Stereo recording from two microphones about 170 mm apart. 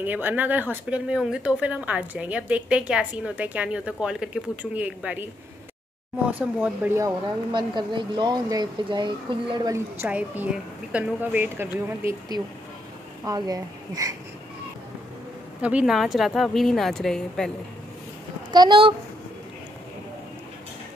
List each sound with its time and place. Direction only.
0.0 s speech: 10° right (ahead or behind)
6.3 s speech: 10° right (ahead or behind)
7.5 s speech: 25° right (ahead or behind)
9.9 s a woman's voice: 10° right (ahead or behind)
15.6 s a woman's voice: 5° right (ahead or behind)
18.5 s speech: 25° right (ahead or behind)